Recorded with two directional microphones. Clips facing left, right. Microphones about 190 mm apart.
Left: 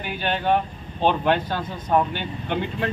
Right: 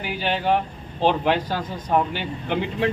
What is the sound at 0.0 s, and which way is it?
Speech, 10° right (ahead or behind).